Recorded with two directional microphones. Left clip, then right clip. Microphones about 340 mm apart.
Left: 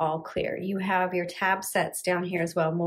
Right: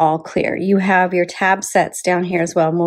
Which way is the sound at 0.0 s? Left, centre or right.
Centre.